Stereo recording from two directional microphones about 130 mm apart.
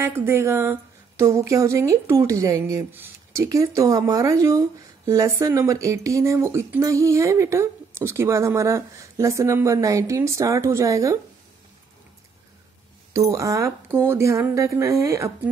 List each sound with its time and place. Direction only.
0.0 s speech: 15° right (ahead or behind)
13.1 s speech: 25° right (ahead or behind)